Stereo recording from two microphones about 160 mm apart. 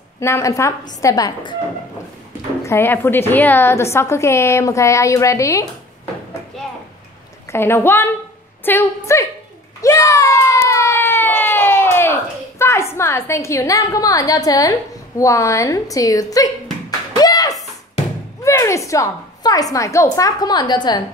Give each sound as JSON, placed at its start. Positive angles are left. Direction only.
{"t": 0.2, "sound": "a woman's voice", "side_deg": 20}
{"t": 2.6, "sound": "a woman's voice", "side_deg": 15}
{"t": 7.4, "sound": "a woman's voice", "side_deg": 15}
{"t": 9.8, "sound": "a sound", "side_deg": 20}
{"t": 18.4, "sound": "a woman's voice", "side_deg": 20}